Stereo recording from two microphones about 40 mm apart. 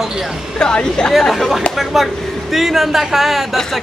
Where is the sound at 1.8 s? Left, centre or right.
Centre.